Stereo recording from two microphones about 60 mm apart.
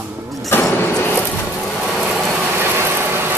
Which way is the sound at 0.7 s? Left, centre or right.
Left.